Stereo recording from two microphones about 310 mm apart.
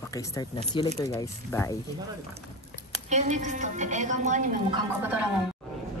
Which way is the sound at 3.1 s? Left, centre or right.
Right.